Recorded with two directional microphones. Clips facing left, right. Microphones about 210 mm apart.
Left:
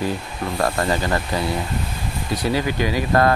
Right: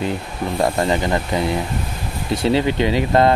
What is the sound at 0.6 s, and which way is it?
Speech, 20° right (ahead or behind).